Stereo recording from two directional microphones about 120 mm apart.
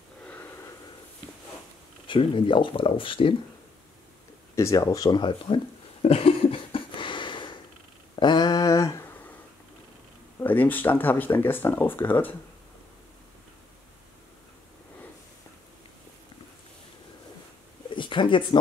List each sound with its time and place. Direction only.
0.2 s a sound: 15° left (ahead or behind)
2.0 s speech: 45° left (ahead or behind)
4.6 s speech: 25° left (ahead or behind)
6.0 s a sound: 50° left (ahead or behind); by 9.1 s 25° left (ahead or behind)
10.4 s speech: 15° left (ahead or behind)
17.9 s speech: 45° left (ahead or behind)